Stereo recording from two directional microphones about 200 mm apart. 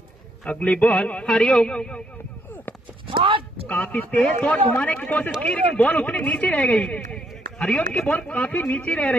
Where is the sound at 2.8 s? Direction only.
25° right (ahead or behind).